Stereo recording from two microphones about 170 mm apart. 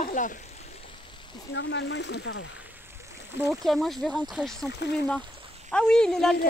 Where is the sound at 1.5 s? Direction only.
90° left.